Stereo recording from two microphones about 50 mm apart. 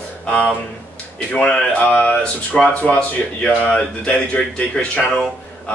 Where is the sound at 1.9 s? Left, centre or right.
Left.